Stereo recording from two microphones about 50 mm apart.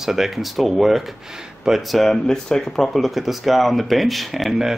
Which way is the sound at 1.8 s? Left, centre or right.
Centre.